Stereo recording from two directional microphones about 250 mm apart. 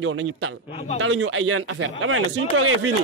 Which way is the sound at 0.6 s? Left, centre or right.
Left.